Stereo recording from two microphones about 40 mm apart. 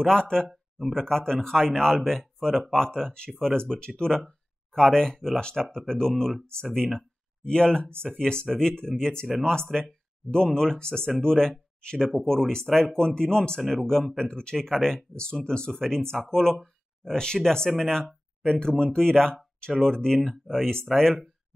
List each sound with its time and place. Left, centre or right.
0.0 s speech: centre
13.6 s speech: centre
14.1 s speech: centre
20.2 s speech: centre